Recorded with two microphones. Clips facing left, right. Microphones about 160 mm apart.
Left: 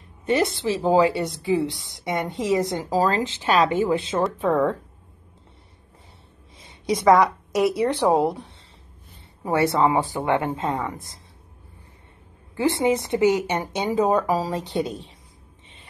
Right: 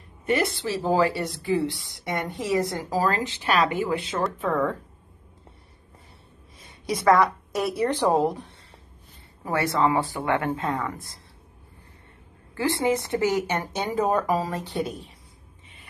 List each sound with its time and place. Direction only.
0.3 s a woman's voice: 20° left (ahead or behind)
4.4 s a woman's voice: 10° left (ahead or behind)
6.9 s a woman's voice: 20° left (ahead or behind)
9.4 s a woman's voice: 25° left (ahead or behind)
12.5 s a woman's voice: 20° left (ahead or behind)